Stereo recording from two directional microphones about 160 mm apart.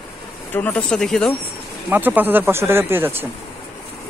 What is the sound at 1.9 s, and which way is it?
Speech, 10° right (ahead or behind).